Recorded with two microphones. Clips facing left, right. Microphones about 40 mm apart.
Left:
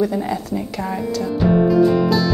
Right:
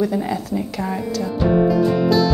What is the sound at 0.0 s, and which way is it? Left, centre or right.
Speech, centre.